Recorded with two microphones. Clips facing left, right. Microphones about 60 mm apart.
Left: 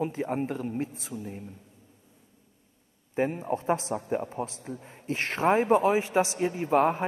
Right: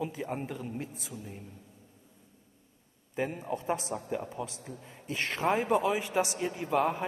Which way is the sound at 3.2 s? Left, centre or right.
Left.